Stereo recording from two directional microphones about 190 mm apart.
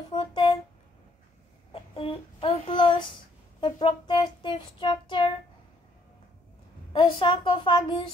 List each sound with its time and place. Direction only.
0.1 s a sound: 25° left (ahead or behind)
1.7 s child singing: 30° left (ahead or behind)
6.9 s child singing: 30° left (ahead or behind)